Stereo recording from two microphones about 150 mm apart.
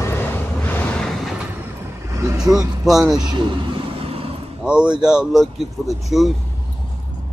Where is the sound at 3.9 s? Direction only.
40° right (ahead or behind).